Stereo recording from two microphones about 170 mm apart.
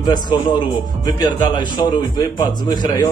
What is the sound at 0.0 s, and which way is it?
Speech, 25° left (ahead or behind).